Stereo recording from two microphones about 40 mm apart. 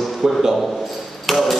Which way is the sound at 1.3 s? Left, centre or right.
Centre.